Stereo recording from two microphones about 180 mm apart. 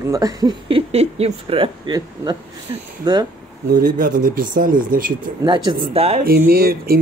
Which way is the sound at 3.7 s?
55° right (ahead or behind).